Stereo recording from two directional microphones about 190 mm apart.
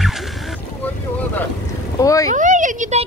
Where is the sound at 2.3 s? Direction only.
40° right (ahead or behind).